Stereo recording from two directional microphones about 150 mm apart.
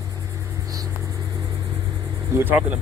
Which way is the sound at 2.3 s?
15° right (ahead or behind).